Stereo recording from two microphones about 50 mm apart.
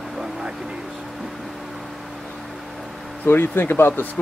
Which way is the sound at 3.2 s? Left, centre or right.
Left.